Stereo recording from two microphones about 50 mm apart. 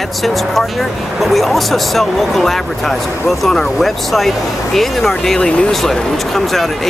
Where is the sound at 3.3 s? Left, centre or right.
Centre.